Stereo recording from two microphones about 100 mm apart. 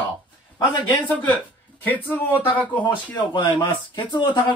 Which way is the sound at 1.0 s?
15° left (ahead or behind).